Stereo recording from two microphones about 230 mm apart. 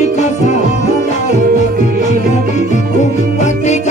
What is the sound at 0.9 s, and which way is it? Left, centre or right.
Music, right.